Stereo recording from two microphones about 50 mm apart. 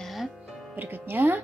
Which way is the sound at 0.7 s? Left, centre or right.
Right.